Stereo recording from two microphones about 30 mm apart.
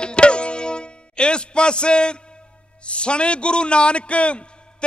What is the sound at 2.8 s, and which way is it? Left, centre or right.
A man's voice, left.